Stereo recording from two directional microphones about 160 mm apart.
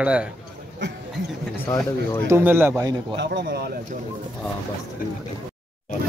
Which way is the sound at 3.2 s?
90° right.